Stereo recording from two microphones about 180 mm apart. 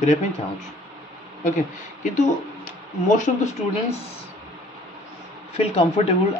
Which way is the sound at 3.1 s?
45° left (ahead or behind).